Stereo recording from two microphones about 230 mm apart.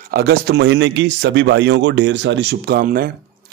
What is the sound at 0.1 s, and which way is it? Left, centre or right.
A man's voice, right.